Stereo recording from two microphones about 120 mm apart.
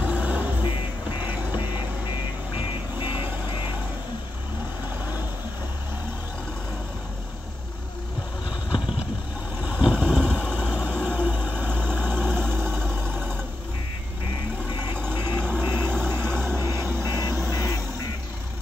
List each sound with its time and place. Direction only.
0.0 s vehicle: 10° right (ahead or behind)
9.6 s vehicle: 10° right (ahead or behind)
15.0 s vehicle: 20° right (ahead or behind)